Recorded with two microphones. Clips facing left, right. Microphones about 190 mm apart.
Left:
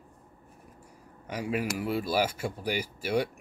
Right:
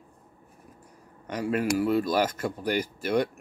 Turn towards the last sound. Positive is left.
turn(degrees=10)  # may be behind; listen again after turning